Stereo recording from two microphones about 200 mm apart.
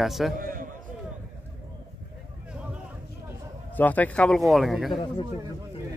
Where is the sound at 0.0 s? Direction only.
Centre (ahead or behind).